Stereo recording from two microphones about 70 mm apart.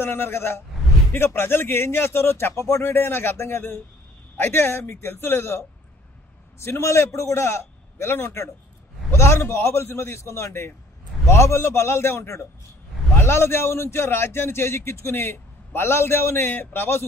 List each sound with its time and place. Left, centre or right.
0.0 s a man's voice: left